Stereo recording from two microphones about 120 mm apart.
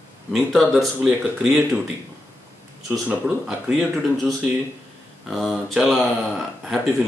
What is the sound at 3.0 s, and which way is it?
Speech, 5° right (ahead or behind).